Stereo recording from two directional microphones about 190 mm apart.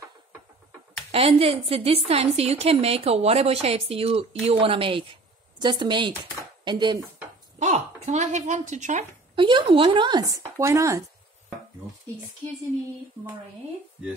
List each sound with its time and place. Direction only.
1.1 s a woman's voice: 30° right (ahead or behind)
7.5 s speech: 40° right (ahead or behind)
9.4 s speech: 25° right (ahead or behind)